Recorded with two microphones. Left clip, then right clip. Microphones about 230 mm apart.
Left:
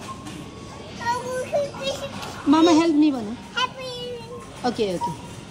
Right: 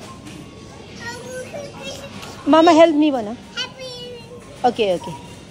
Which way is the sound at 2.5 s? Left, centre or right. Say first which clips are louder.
Right 7 dB; left.